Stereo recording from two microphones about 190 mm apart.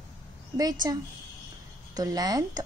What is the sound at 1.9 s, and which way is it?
Speech, 20° right (ahead or behind).